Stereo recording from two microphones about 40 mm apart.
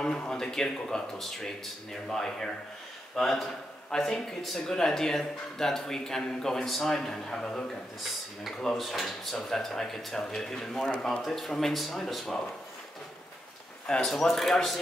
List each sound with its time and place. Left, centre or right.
0.0 s a man's voice: left
8.7 s a man's voice: centre
13.8 s speech: centre
14.1 s speech: centre